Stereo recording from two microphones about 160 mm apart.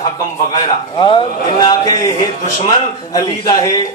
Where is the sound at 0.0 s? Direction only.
25° left (ahead or behind).